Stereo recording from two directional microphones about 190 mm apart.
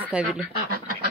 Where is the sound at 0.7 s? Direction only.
50° right (ahead or behind).